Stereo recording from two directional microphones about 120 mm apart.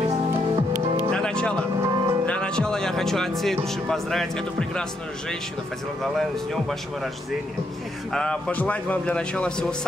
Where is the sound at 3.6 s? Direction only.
5° left (ahead or behind).